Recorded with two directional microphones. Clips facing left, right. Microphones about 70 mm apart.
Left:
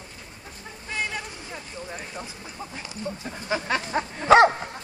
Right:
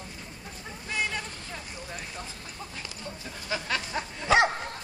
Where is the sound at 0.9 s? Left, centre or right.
Centre.